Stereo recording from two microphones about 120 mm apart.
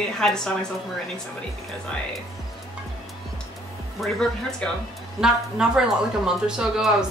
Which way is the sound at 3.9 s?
5° left (ahead or behind).